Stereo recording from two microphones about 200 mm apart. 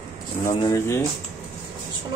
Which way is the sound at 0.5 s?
15° left (ahead or behind).